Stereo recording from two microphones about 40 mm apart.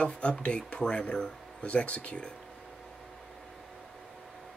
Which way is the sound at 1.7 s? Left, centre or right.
Left.